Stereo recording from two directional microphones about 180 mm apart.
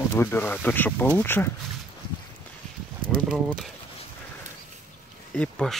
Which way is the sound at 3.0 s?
50° right (ahead or behind).